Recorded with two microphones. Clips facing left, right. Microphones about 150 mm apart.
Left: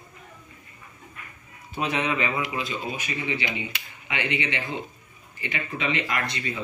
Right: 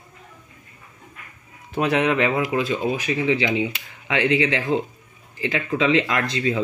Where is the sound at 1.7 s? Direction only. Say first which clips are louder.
Right 7 dB; 65° right (ahead or behind).